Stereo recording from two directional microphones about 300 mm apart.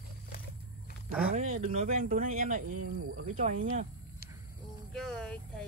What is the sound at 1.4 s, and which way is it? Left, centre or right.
Speech, right.